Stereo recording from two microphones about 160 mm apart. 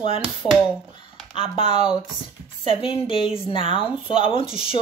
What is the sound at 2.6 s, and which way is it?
Speech, 35° left (ahead or behind).